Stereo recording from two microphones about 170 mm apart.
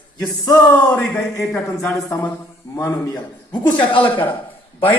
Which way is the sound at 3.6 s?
30° left (ahead or behind).